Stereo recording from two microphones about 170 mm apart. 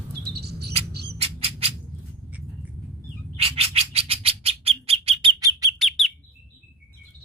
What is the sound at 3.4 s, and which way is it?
Bird, 35° right (ahead or behind).